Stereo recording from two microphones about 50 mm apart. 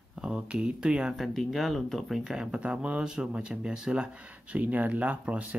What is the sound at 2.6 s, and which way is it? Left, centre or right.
Speech, right.